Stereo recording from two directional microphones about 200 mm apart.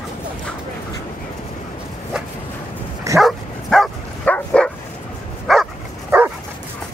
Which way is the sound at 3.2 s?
Centre (ahead or behind).